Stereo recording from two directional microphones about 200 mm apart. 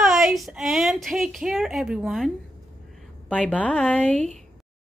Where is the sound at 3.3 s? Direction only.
5° left (ahead or behind).